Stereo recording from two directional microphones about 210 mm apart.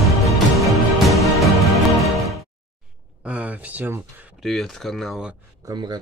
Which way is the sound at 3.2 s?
5° right (ahead or behind).